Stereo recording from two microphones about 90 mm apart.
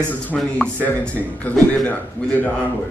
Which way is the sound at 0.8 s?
15° left (ahead or behind).